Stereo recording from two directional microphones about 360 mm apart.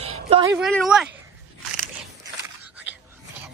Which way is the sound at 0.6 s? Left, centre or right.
Centre.